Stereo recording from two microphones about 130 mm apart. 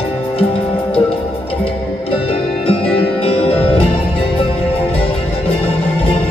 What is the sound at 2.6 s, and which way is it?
Music, 45° left (ahead or behind).